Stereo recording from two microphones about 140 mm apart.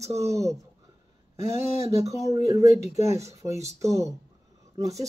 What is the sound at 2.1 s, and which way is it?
Speech, 25° right (ahead or behind).